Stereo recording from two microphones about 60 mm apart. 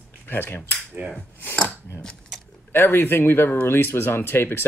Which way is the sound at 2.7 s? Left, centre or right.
Left.